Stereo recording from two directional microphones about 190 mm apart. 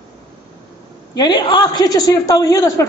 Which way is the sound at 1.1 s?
20° left (ahead or behind).